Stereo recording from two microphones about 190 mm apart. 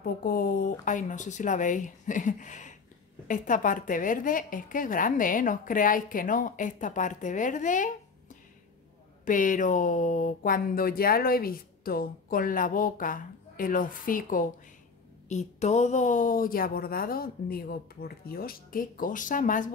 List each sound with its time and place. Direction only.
0.0 s speech: 50° left (ahead or behind)
9.2 s speech: 45° left (ahead or behind)